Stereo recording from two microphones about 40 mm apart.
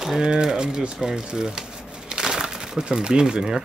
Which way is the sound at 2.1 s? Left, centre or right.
Centre.